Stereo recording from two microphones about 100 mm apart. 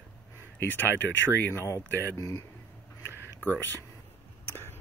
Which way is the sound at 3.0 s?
20° left (ahead or behind).